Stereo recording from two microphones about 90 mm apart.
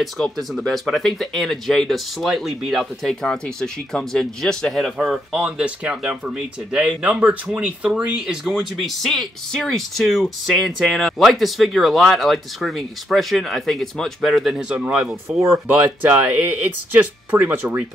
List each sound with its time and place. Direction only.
0.0 s speech: centre (ahead or behind)
4.9 s speech: 10° right (ahead or behind)